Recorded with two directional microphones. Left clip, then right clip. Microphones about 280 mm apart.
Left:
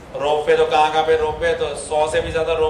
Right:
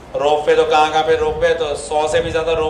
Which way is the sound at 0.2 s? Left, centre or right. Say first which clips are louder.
Right 2 dB; centre.